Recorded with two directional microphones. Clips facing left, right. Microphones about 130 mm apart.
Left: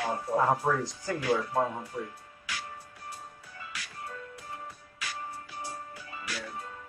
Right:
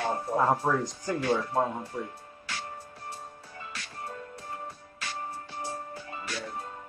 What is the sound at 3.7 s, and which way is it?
Music, 30° right (ahead or behind).